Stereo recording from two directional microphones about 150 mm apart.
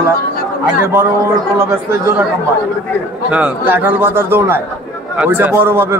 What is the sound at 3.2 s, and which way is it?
A man's voice, 10° right (ahead or behind).